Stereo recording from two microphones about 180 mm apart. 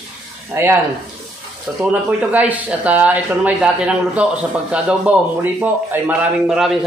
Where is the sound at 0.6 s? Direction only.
15° right (ahead or behind).